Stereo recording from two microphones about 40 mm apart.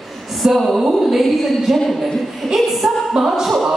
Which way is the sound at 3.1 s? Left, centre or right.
Centre.